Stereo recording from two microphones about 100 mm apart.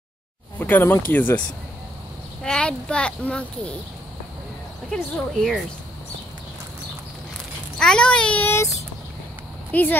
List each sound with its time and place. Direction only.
0.6 s speech: 20° left (ahead or behind)
2.4 s a child's voice: 10° left (ahead or behind)
4.9 s speech: 5° left (ahead or behind)
7.8 s a child's voice: 10° left (ahead or behind)
9.7 s speech: 15° left (ahead or behind)